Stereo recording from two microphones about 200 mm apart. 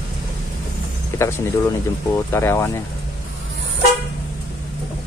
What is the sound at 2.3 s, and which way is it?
Speech, 15° left (ahead or behind).